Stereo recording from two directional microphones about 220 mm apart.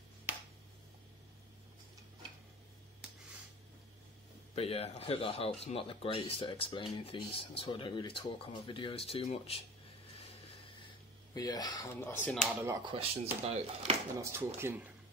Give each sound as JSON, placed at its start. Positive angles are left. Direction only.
{"t": 4.6, "sound": "speech", "side_deg": 25}
{"t": 11.3, "sound": "speech", "side_deg": 15}
{"t": 12.6, "sound": "speech", "side_deg": -20}
{"t": 14.1, "sound": "speech", "side_deg": -10}